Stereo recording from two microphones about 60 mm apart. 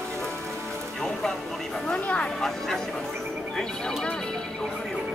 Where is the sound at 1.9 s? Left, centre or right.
Left.